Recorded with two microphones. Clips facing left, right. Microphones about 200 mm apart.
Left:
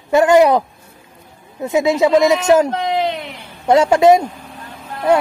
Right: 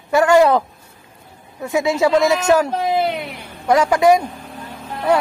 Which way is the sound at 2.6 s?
10° right (ahead or behind).